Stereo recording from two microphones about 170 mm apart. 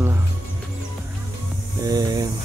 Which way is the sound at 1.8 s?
20° right (ahead or behind).